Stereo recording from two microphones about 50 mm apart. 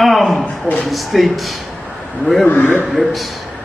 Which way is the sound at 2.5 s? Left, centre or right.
Left.